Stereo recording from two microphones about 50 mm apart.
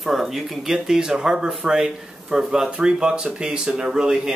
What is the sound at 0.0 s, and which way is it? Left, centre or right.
A man's voice, centre.